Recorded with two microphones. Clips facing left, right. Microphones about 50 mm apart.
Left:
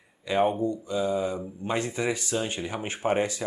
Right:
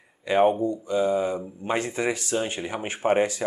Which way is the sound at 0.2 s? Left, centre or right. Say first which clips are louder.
Right 4 dB; centre.